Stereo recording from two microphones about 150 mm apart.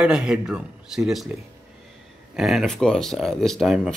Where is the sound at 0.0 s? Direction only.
5° right (ahead or behind).